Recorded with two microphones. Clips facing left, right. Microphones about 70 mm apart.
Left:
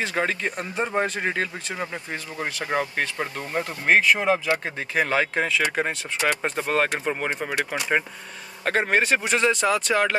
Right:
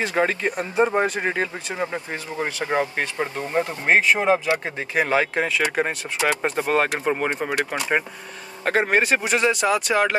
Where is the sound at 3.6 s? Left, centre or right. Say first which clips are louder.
Right 1 dB; right.